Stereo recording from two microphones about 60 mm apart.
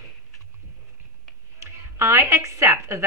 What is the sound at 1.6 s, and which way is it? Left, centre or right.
A woman's voice, right.